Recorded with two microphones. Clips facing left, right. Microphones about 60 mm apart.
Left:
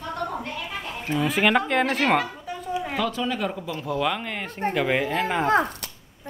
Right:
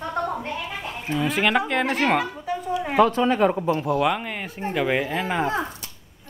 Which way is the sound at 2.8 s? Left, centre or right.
Right.